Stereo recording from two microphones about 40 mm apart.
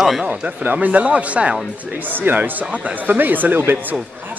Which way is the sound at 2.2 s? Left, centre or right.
Right.